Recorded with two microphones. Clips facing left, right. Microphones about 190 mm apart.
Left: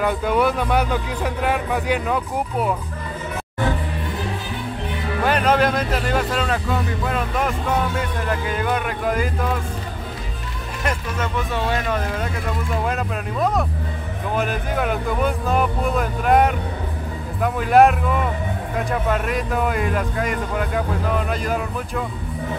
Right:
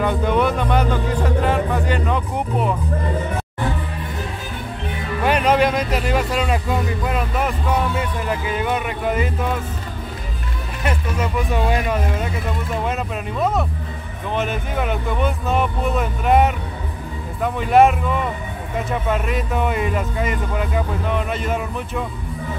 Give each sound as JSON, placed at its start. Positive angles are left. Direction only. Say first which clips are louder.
{"t": 0.0, "sound": "speech", "louder": "right 1 dB", "side_deg": 5}
{"t": 5.2, "sound": "speech", "louder": "right 1 dB", "side_deg": -5}
{"t": 10.8, "sound": "speech", "louder": "right 2 dB", "side_deg": -10}